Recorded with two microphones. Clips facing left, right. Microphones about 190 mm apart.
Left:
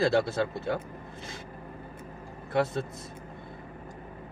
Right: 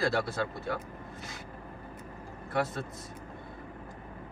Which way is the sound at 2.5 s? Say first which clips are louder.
Left 4 dB; 25° left (ahead or behind).